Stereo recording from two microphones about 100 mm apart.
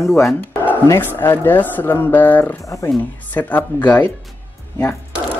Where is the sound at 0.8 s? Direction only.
25° left (ahead or behind).